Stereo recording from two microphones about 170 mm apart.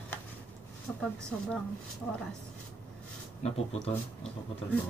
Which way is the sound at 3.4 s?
35° left (ahead or behind).